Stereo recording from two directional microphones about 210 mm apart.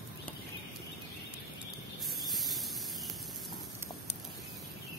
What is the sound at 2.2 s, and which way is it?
Spray, centre (ahead or behind).